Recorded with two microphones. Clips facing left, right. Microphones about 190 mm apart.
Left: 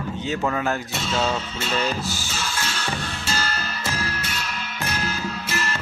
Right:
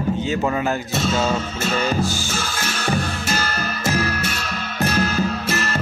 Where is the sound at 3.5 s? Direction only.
45° right (ahead or behind).